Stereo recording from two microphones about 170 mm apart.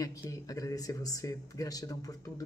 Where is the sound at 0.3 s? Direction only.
20° left (ahead or behind).